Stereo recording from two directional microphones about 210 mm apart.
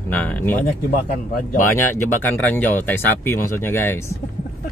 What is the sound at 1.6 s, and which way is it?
Speech, 10° left (ahead or behind).